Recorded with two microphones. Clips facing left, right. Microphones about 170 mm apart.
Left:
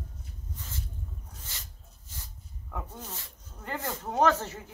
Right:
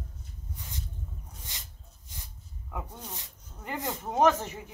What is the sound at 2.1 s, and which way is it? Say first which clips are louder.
Snake: left 1 dB; 15° right (ahead or behind).